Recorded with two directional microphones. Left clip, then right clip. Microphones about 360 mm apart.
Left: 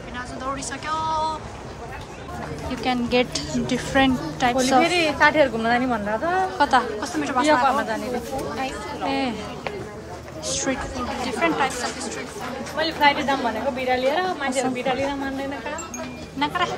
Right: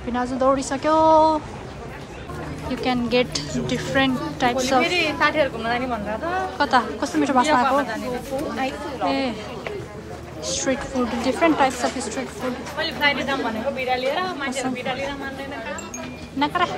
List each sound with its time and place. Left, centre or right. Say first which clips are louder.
0.1 s speech: right 10 dB; centre
2.8 s a woman's voice: right 1 dB; centre
4.8 s a woman's voice: left 2 dB; left
6.6 s speech: right 2 dB; centre
9.0 s a woman's voice: right 2 dB; centre
10.4 s speech: right 2 dB; centre
12.7 s a woman's voice: left 3 dB; left
16.3 s speech: right 2 dB; centre